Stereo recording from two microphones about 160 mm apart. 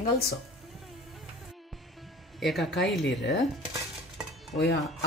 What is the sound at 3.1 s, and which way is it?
Dishes, 90° left.